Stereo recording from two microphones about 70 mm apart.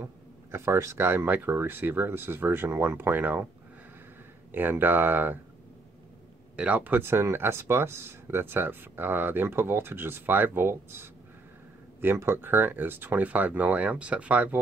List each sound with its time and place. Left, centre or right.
0.0 s speech: right
4.5 s speech: right
6.5 s speech: centre